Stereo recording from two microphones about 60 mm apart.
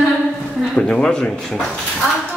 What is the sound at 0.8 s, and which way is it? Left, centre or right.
Speech, centre.